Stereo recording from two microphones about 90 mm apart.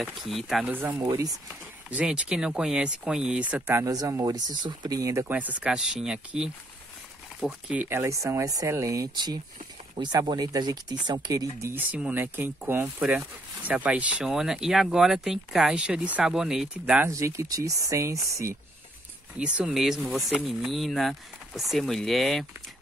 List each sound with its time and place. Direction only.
0.0 s speech: centre (ahead or behind)
1.0 s speech: 40° right (ahead or behind)
1.9 s speech: 15° right (ahead or behind)
3.7 s speech: 40° right (ahead or behind)
5.3 s speech: 20° right (ahead or behind)
7.9 s speech: 30° right (ahead or behind)
9.1 s speech: 55° right (ahead or behind)
11.7 s speech: 20° right (ahead or behind)
17.1 s speech: 35° right (ahead or behind)
19.3 s speech: 10° right (ahead or behind)